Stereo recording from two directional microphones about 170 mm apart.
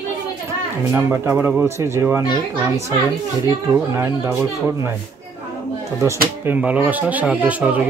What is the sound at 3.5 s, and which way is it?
Speech, 15° right (ahead or behind).